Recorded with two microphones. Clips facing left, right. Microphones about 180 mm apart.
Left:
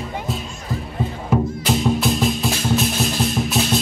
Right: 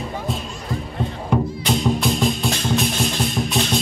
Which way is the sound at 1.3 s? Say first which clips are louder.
Left 1 dB; 5° left (ahead or behind).